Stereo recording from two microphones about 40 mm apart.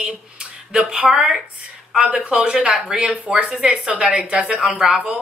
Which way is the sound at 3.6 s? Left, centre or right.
Centre.